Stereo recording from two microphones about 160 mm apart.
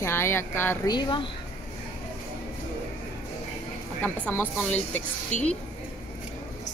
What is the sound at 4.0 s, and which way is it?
A woman's voice, 10° left (ahead or behind).